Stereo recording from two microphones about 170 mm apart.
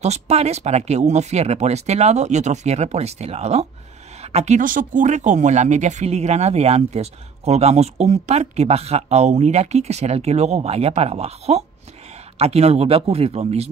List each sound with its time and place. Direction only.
0.0 s speech: 40° right (ahead or behind)